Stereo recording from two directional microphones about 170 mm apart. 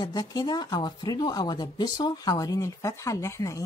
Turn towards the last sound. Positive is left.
turn(degrees=20)  # may be behind; listen again after turning